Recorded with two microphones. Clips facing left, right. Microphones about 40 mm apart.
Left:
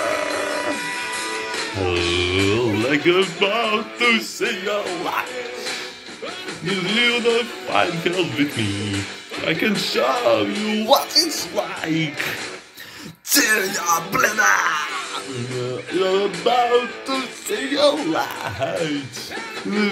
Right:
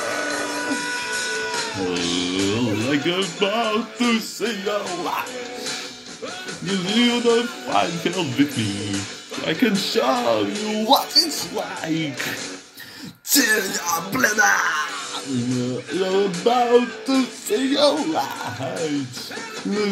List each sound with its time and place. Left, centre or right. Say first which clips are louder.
0.0 s music: left 3 dB; left
3.2 s a man's voice: left 3 dB; left
3.7 s music: left 2 dB; left
4.5 s speech: even; left
6.9 s speech: right 1 dB; left
10.9 s speech: even; left
11.8 s a man's voice: left 1 dB; left
13.3 s music: left 1 dB; left
13.7 s music: left 4 dB; left
14.4 s a man's voice: even; left